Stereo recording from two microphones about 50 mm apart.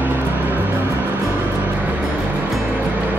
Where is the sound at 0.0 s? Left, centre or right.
Right.